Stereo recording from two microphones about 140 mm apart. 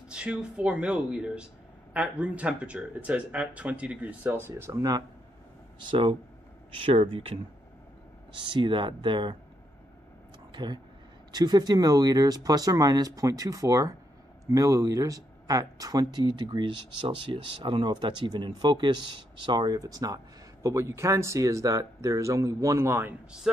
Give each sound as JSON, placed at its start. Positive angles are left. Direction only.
{"t": 0.1, "sound": "speech", "side_deg": -5}
{"t": 5.9, "sound": "speech", "side_deg": -40}
{"t": 8.5, "sound": "speech", "side_deg": -35}
{"t": 10.5, "sound": "a sound", "side_deg": -35}
{"t": 11.3, "sound": "speech", "side_deg": -30}
{"t": 23.5, "sound": "speech", "side_deg": -5}